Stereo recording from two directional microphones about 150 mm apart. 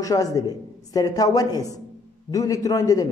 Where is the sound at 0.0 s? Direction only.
25° left (ahead or behind).